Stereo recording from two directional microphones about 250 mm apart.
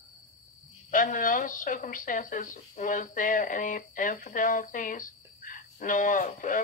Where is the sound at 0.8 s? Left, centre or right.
Left.